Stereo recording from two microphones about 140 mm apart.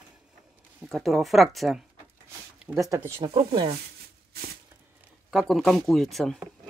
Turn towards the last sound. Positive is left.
turn(degrees=0)  # may be behind; listen again after turning